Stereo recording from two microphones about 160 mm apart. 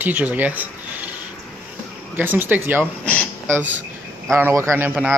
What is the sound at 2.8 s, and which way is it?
Speech, 10° left (ahead or behind).